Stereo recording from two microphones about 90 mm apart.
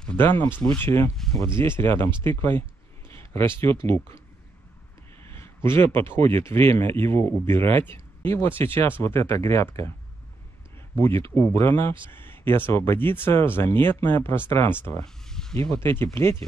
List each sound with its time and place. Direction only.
0.2 s speech: 25° left (ahead or behind)
3.1 s a sound: 30° left (ahead or behind)
3.6 s speech: 25° left (ahead or behind)
5.3 s speech: 25° left (ahead or behind)
11.0 s speech: 30° left (ahead or behind)
15.2 s a sound: 5° left (ahead or behind)
15.7 s speech: 25° left (ahead or behind)